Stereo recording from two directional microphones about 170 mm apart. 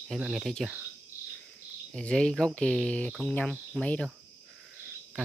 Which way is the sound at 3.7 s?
5° left (ahead or behind).